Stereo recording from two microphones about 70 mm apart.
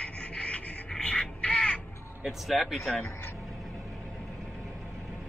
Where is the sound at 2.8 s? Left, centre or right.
Left.